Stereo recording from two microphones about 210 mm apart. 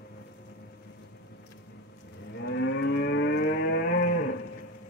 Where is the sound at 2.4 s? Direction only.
65° left (ahead or behind).